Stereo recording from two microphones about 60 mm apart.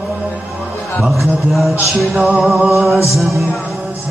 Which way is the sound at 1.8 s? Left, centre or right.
Centre.